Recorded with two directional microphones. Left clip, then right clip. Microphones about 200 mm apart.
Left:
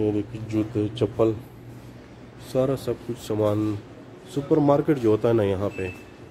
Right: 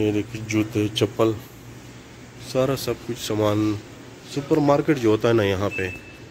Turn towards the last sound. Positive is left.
turn(degrees=0)  # may be behind; listen again after turning